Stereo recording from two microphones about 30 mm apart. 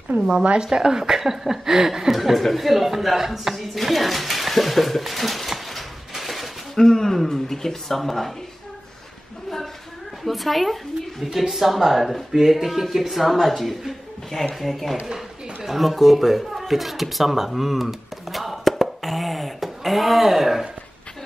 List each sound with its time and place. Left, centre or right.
0.2 s a woman's voice: right
0.7 s speech: right
2.1 s speech: centre
3.5 s dishes: centre
6.7 s speech: centre
10.2 s speech: centre
11.5 s speech: centre